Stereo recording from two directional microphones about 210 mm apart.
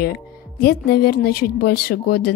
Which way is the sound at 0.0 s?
45° left (ahead or behind).